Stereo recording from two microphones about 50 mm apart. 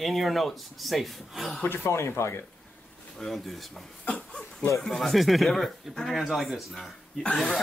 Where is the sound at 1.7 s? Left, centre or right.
Left.